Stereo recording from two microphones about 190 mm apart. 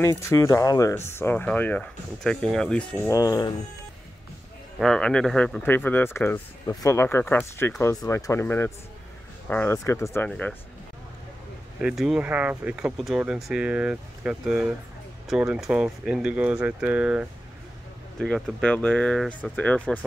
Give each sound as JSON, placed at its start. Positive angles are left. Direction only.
{"t": 0.0, "sound": "speech", "side_deg": 15}
{"t": 3.1, "sound": "speech", "side_deg": 20}
{"t": 4.7, "sound": "speech", "side_deg": 5}
{"t": 11.8, "sound": "speech", "side_deg": 0}